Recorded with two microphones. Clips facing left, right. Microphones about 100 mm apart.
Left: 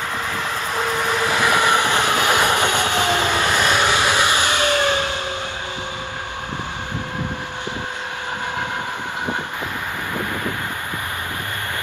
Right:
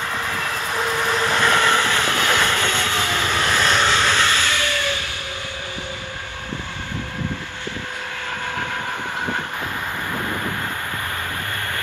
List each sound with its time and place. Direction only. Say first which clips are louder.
0.4 s train: left 1 dB; 15° left (ahead or behind)